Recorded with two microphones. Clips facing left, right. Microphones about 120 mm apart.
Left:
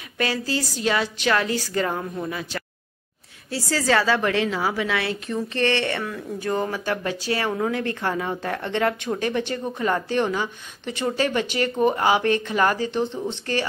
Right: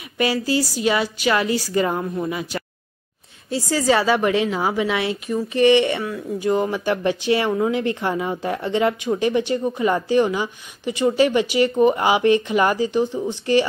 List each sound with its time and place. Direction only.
0.2 s speech: 10° right (ahead or behind)